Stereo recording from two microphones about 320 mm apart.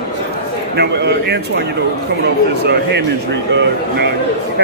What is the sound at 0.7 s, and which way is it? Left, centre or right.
Speech, right.